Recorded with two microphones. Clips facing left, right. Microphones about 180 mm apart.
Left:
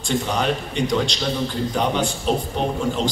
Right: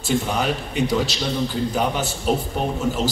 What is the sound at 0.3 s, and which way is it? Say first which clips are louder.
A man's voice: left 1 dB; 5° right (ahead or behind).